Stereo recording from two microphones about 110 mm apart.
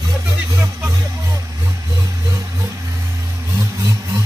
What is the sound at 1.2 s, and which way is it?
Vehicle, 25° right (ahead or behind).